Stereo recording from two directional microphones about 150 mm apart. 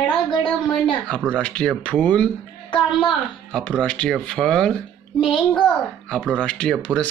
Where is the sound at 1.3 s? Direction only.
5° left (ahead or behind).